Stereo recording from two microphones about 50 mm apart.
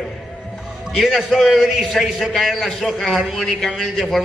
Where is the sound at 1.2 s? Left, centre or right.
Centre.